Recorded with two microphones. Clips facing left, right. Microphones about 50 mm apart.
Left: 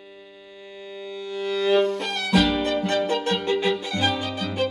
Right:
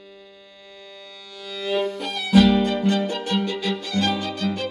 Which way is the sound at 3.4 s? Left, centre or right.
Left.